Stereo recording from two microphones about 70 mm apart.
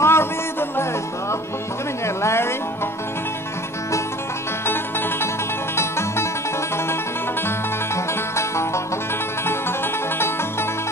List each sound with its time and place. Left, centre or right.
0.0 s music: left
2.0 s music: left
5.8 s music: left
7.4 s music: left